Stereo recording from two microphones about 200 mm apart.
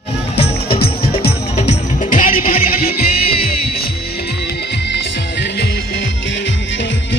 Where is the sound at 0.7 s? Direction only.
50° left (ahead or behind).